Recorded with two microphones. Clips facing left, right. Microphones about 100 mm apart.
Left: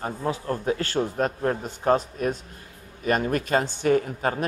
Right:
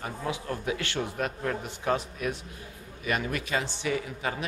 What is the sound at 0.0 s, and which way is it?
A man's voice, 40° left (ahead or behind).